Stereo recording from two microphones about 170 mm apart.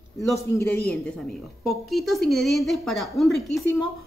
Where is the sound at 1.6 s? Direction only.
Centre (ahead or behind).